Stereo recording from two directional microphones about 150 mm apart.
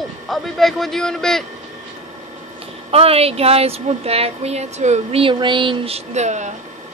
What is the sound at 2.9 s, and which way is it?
Speech, 40° right (ahead or behind).